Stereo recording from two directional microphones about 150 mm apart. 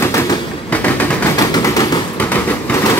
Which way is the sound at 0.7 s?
10° left (ahead or behind).